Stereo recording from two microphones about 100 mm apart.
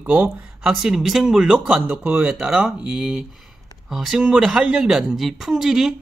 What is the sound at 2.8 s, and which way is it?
Speech, 10° right (ahead or behind).